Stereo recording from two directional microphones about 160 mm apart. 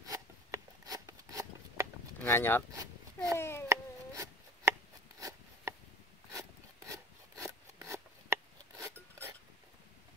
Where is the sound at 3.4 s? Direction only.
15° left (ahead or behind).